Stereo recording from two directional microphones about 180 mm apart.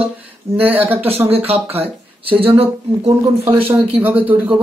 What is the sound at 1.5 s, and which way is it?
Speech, 35° right (ahead or behind).